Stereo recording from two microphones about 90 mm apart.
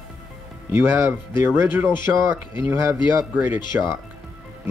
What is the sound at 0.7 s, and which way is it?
Speech, 25° right (ahead or behind).